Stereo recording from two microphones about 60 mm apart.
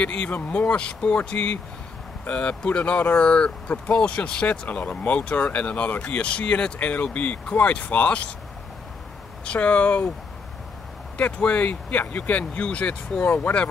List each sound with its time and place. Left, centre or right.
0.0 s speech: left
9.4 s speech: left
11.1 s speech: left